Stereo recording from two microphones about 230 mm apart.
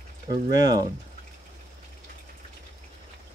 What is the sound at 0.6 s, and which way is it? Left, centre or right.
Speech, centre.